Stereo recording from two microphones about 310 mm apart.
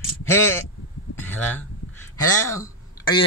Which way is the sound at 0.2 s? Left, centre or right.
Centre.